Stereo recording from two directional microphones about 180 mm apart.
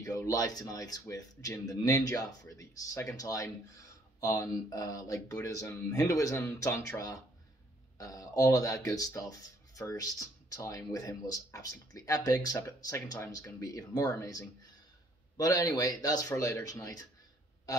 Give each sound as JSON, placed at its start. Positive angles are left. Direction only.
{"t": 0.0, "sound": "speech", "side_deg": 20}